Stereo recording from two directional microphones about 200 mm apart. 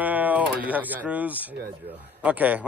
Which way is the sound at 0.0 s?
10° right (ahead or behind).